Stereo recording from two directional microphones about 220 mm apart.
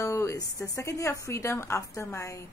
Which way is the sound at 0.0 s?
15° left (ahead or behind).